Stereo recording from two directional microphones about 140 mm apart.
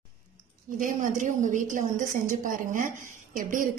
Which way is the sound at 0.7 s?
70° right (ahead or behind).